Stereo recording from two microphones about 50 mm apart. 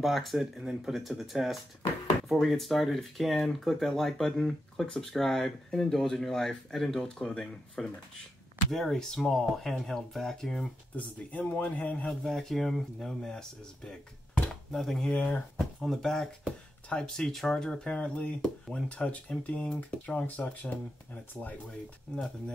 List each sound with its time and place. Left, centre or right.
0.0 s speech: centre
0.6 s speech: centre
0.9 s speech: centre
11.0 s speech: left
12.1 s speech: centre
14.5 s a sound: centre
15.0 s speech: left
15.6 s speech: centre
17.3 s speech: centre
17.6 s speech: centre; by 21.5 s left
21.6 s speech: centre